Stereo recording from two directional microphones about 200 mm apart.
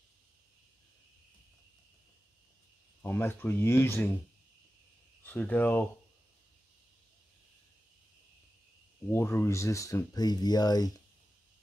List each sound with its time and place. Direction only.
3.0 s speech: 10° left (ahead or behind)
5.2 s speech: 10° left (ahead or behind)
9.1 s speech: 10° left (ahead or behind)